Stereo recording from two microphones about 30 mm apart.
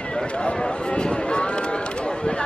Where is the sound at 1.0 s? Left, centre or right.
Left.